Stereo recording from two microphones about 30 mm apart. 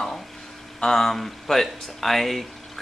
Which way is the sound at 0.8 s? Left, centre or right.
Centre.